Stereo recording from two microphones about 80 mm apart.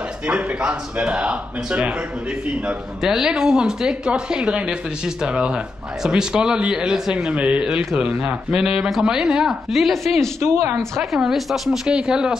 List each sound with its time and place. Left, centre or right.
0.3 s speech: centre
10.4 s speech: right
11.0 s speech: centre